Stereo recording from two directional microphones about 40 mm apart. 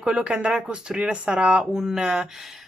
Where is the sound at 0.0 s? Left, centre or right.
Right.